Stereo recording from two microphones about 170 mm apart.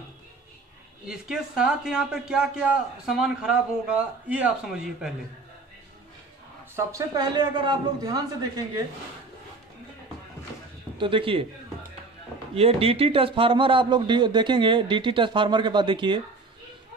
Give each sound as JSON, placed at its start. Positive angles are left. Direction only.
{"t": 1.0, "sound": "a man's voice", "side_deg": -5}
{"t": 6.7, "sound": "a man's voice", "side_deg": -20}
{"t": 11.0, "sound": "a man's voice", "side_deg": -30}
{"t": 12.5, "sound": "a man's voice", "side_deg": -35}